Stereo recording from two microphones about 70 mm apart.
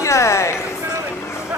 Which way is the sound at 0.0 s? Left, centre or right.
Left.